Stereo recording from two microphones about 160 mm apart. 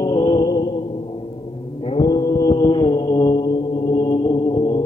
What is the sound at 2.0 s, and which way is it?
Mantra, 25° left (ahead or behind).